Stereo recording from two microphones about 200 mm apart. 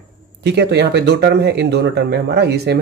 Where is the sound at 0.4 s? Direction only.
55° right (ahead or behind).